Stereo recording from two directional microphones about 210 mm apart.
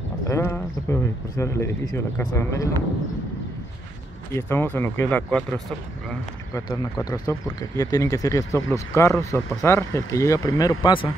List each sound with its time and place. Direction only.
0.3 s speech: 10° left (ahead or behind)
4.4 s speech: 10° left (ahead or behind)
6.5 s speech: 20° left (ahead or behind)